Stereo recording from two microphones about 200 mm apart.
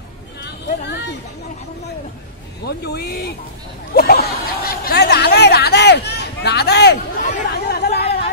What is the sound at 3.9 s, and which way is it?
Snicker, 50° left (ahead or behind).